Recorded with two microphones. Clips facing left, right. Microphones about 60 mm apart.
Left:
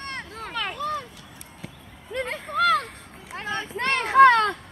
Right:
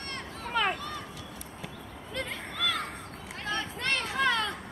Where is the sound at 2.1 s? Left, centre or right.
Centre.